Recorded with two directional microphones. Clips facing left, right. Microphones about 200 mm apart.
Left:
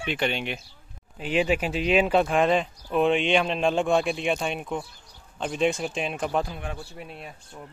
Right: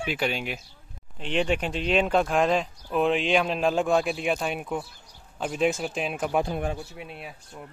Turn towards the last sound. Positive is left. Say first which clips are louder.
# even
turn(degrees=0)  # may be behind; listen again after turning